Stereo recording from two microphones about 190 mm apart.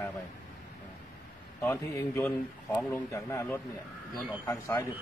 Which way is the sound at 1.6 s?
15° left (ahead or behind).